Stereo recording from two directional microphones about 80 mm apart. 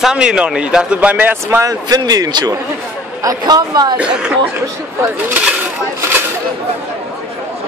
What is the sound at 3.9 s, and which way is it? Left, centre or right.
Speech, centre.